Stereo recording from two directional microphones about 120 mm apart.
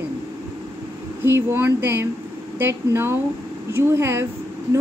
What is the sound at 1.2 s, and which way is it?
A woman's voice, 15° right (ahead or behind).